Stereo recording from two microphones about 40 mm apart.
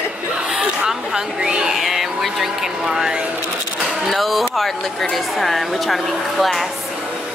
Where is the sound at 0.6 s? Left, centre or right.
Centre.